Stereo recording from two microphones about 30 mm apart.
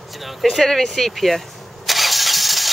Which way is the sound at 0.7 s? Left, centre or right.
Centre.